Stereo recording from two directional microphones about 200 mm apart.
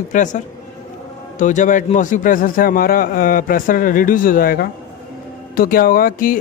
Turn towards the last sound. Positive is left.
turn(degrees=45)  # may be behind; listen again after turning